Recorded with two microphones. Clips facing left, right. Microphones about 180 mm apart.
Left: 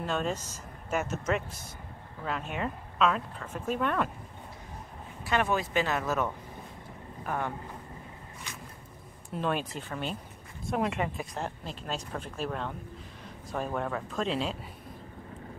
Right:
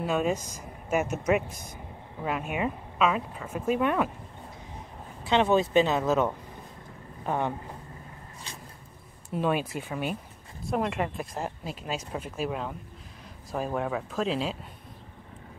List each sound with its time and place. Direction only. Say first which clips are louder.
0.0 s speech: right 4 dB; 10° right (ahead or behind)
5.2 s speech: right 6 dB; 25° right (ahead or behind)
8.5 s a sound: right 1 dB; 30° right (ahead or behind)
9.3 s speech: right 4 dB; 5° right (ahead or behind)